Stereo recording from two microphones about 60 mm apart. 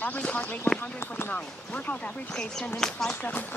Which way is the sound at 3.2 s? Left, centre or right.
Left.